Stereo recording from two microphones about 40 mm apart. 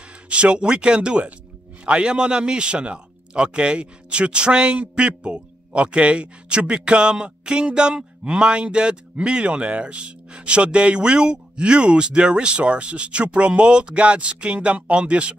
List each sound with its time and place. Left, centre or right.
0.3 s a man's voice: right